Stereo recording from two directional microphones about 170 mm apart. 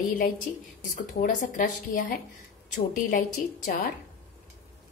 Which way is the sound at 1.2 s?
55° left (ahead or behind).